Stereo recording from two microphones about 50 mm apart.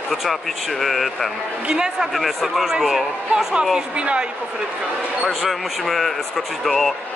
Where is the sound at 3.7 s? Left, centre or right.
Right.